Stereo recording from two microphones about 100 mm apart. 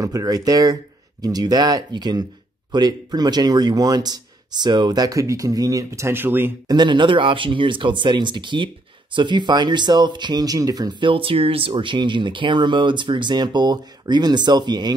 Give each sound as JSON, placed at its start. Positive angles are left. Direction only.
{"t": 0.0, "sound": "speech", "side_deg": -35}
{"t": 6.7, "sound": "speech", "side_deg": -50}